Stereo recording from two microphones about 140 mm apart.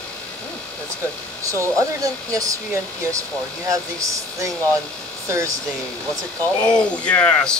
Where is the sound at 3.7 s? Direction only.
20° right (ahead or behind).